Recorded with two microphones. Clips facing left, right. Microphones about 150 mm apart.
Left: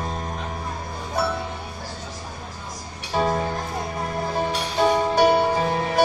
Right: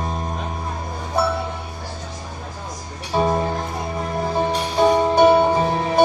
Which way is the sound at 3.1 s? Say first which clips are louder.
Right 3 dB; 25° right (ahead or behind).